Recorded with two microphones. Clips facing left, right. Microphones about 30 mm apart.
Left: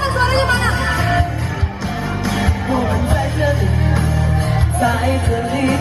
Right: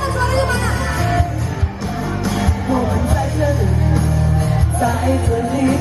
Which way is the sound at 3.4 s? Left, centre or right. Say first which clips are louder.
Even; left.